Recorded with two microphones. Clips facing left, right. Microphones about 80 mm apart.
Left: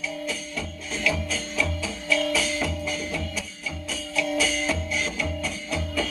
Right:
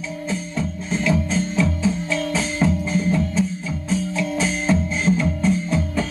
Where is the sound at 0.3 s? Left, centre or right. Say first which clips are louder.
Right 7 dB; right.